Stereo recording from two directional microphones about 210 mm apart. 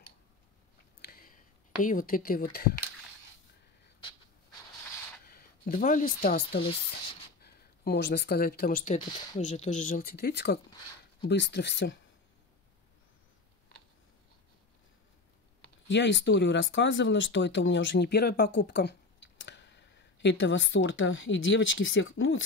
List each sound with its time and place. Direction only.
1.0 s a sound: 45° left (ahead or behind)
5.2 s speech: 45° left (ahead or behind)
15.6 s speech: 60° left (ahead or behind)